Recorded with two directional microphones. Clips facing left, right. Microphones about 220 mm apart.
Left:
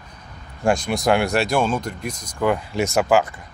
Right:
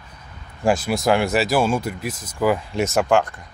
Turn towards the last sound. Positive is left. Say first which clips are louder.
# even
turn(degrees=5)  # may be behind; listen again after turning